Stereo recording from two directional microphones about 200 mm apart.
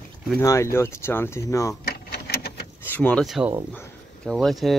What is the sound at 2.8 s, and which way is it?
Speech, 10° left (ahead or behind).